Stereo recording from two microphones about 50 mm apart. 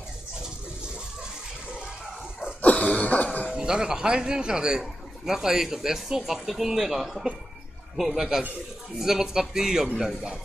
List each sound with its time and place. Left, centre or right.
2.6 s cough: left
3.4 s speech: centre